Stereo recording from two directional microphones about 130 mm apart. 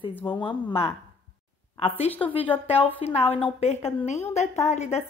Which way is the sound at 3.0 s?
50° left (ahead or behind).